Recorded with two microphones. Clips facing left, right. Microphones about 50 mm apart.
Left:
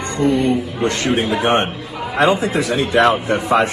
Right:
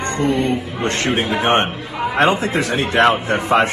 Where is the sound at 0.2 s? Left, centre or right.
Right.